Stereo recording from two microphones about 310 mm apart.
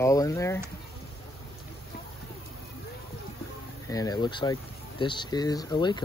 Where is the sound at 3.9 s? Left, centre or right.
Centre.